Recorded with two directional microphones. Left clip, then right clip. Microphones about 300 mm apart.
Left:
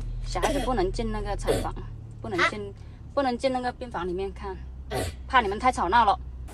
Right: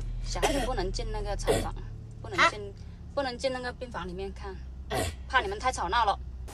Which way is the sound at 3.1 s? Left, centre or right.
Left.